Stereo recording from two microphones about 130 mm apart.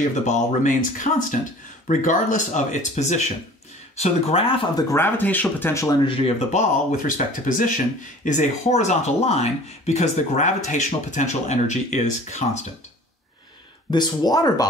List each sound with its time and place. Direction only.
0.2 s speech: 75° left (ahead or behind)
3.9 s speech: 55° left (ahead or behind)
4.9 s speech: 15° left (ahead or behind)
6.0 s speech: 45° left (ahead or behind)
6.5 s speech: 85° left
8.3 s speech: 65° left (ahead or behind)
13.8 s speech: 35° left (ahead or behind)